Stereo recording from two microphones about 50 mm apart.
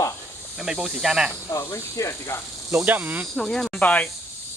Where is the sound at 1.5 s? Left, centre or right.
Left.